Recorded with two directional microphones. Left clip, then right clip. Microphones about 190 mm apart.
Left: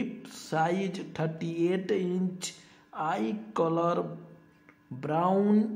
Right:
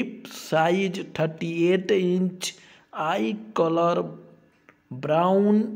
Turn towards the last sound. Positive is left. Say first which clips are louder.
# right 5 dB
turn(degrees=-20)  # may be behind; listen again after turning